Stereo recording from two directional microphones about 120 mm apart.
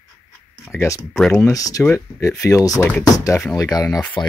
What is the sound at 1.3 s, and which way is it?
Speech, 30° left (ahead or behind).